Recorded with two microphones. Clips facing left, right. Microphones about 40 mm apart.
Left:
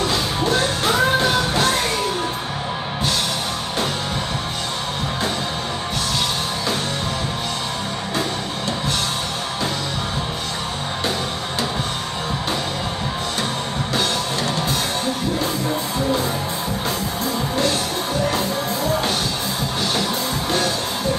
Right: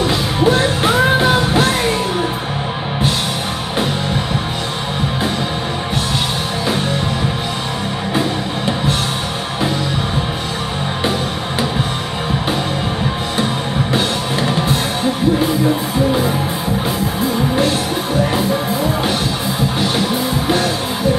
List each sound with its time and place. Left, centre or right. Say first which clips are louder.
0.0 s music: right 6 dB; centre
18.2 s music: right 4 dB; centre
20.4 s music: right 4 dB; right